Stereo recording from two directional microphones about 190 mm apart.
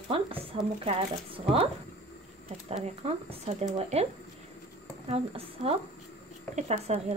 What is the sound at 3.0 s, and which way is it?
Speech, 35° right (ahead or behind).